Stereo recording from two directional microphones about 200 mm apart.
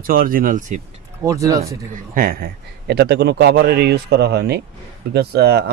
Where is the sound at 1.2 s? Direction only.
15° right (ahead or behind).